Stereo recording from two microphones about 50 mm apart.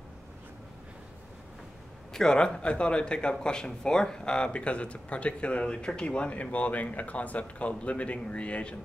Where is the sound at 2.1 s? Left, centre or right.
Centre.